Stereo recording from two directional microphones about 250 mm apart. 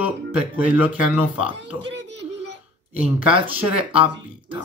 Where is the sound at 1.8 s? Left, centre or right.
Right.